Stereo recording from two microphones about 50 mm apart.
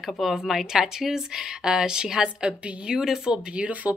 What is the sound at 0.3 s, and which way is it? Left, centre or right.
Speech, centre.